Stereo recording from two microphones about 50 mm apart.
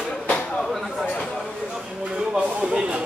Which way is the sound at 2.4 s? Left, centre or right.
Right.